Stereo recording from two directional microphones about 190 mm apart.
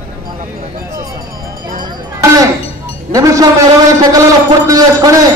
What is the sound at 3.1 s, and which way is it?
A man's voice, 15° right (ahead or behind).